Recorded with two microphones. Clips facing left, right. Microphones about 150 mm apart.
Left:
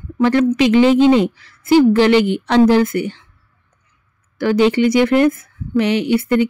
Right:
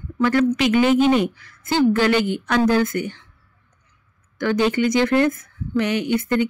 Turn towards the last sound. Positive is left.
turn(degrees=20)  # may be behind; listen again after turning